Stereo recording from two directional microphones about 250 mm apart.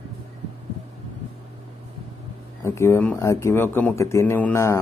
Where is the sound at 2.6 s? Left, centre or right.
Centre.